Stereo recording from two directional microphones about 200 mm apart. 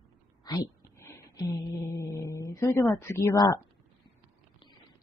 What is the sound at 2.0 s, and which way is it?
A woman's voice, 15° left (ahead or behind).